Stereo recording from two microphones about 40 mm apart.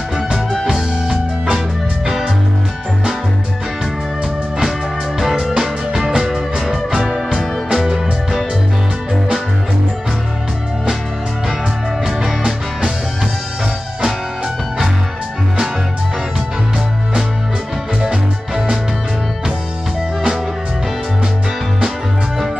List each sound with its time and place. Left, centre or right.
0.7 s music: centre
5.5 s music: centre
12.3 s music: centre
18.0 s music: centre